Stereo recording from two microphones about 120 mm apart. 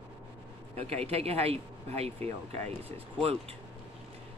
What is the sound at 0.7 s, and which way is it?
Speech, 55° right (ahead or behind).